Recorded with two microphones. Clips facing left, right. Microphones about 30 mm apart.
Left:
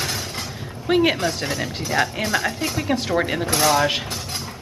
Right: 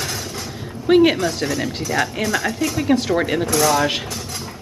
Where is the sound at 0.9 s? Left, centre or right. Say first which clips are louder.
Right 4 dB; centre.